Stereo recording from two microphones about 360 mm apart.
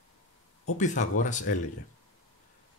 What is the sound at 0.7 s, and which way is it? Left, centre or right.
Speech, left.